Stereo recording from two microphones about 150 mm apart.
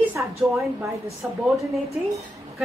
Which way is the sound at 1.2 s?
5° right (ahead or behind).